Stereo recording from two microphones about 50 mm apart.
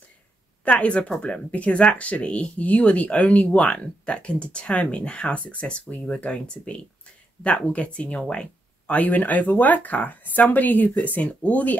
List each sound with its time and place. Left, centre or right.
0.7 s speech: left